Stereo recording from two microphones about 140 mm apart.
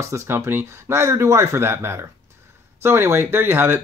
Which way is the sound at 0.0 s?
20° right (ahead or behind).